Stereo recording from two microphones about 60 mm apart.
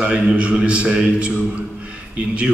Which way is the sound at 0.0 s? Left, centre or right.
Centre.